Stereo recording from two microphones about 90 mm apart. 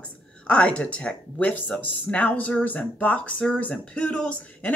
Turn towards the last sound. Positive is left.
turn(degrees=15)  # may be behind; listen again after turning